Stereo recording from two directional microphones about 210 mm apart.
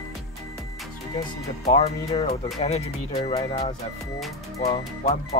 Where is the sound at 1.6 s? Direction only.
30° left (ahead or behind).